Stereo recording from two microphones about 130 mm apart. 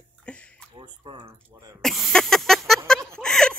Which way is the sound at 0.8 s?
35° right (ahead or behind).